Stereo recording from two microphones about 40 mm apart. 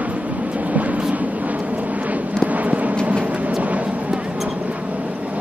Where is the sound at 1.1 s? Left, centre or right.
Right.